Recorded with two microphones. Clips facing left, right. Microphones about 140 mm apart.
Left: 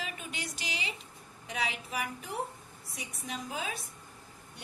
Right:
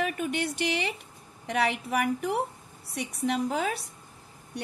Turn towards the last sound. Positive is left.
turn(degrees=-75)  # may be behind; listen again after turning